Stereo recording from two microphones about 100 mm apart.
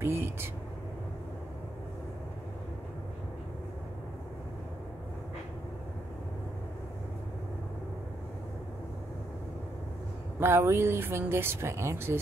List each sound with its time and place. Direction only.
0.0 s vehicle: 25° right (ahead or behind)
10.4 s speech: 25° right (ahead or behind)